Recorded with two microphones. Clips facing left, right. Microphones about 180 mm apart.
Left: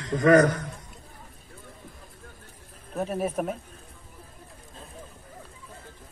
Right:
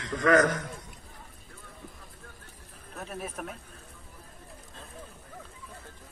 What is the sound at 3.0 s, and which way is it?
Speech, 45° left (ahead or behind).